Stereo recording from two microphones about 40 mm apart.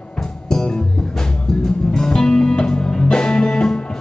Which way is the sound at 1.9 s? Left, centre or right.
Centre.